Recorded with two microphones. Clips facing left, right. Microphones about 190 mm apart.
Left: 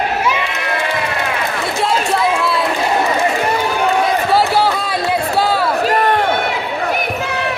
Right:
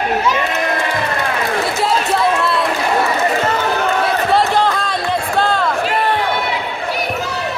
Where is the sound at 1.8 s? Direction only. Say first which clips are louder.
Left 2 dB; centre (ahead or behind).